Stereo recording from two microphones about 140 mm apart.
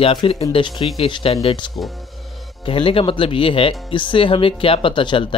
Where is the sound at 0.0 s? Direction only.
40° left (ahead or behind).